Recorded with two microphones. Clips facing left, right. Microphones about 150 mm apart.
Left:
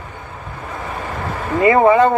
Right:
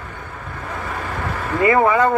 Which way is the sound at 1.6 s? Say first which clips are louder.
Left 4 dB; 25° left (ahead or behind).